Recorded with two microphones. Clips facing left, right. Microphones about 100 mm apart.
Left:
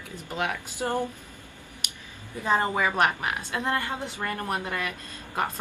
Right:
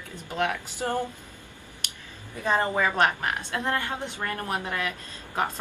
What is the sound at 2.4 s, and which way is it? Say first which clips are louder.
Speech: even; 20° left (ahead or behind).